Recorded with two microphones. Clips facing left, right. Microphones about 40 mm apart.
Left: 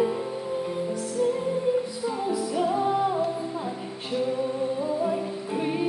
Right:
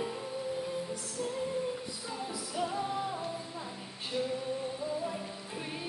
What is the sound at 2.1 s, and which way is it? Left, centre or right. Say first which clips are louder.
Music: left 11 dB; left.